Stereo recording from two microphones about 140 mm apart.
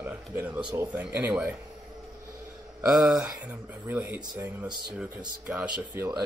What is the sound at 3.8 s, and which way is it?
Speech, 15° right (ahead or behind).